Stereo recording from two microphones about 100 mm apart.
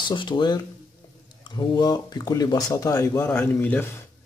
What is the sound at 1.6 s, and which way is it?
Speech, 40° left (ahead or behind).